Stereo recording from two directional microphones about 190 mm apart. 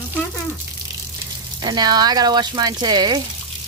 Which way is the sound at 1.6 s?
20° right (ahead or behind).